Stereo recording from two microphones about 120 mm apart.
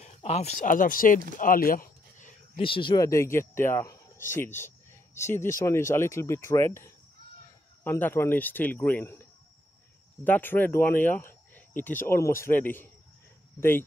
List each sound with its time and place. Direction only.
0.0 s speech: 65° left (ahead or behind); by 1.2 s 90° left
2.5 s speech: 45° left (ahead or behind)
3.0 s speech: 25° left (ahead or behind)
13.6 s speech: 20° left (ahead or behind)